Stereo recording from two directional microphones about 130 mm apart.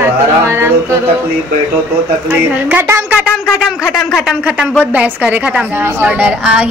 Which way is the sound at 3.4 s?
5° right (ahead or behind).